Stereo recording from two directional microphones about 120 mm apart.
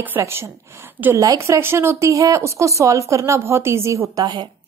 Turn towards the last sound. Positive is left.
turn(degrees=-25)  # may be behind; listen again after turning